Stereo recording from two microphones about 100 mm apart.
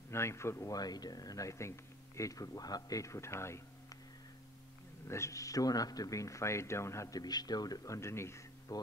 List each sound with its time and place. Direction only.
0.1 s speech: 25° left (ahead or behind)
5.0 s speech: 30° left (ahead or behind)